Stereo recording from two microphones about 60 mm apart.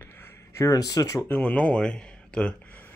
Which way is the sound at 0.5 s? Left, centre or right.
Left.